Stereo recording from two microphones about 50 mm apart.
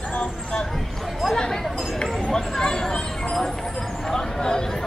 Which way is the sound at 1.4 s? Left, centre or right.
Centre.